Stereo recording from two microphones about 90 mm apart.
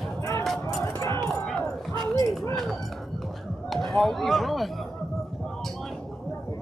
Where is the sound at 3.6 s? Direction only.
Centre (ahead or behind).